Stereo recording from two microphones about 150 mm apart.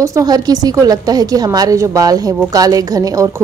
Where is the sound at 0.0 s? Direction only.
25° right (ahead or behind).